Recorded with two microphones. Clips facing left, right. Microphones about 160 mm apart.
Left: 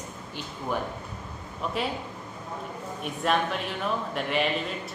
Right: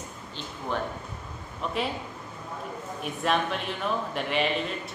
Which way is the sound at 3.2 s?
Centre (ahead or behind).